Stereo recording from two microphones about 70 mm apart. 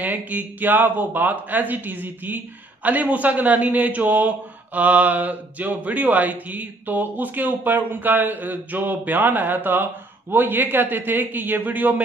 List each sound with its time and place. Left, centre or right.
0.0 s speech: right